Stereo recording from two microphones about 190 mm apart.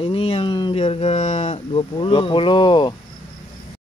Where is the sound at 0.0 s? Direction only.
30° left (ahead or behind).